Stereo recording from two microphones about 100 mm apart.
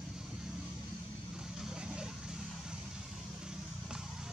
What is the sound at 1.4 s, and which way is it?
Vehicle, 5° right (ahead or behind).